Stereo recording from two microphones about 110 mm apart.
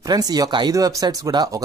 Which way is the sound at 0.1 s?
35° right (ahead or behind).